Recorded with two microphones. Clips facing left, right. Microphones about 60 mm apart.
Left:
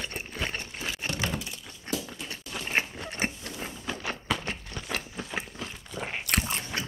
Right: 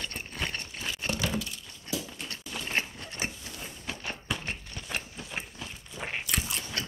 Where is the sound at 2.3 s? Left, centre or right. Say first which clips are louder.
Left 3 dB; left.